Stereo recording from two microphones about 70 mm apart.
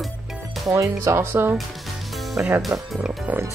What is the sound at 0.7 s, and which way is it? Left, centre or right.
Speech, right.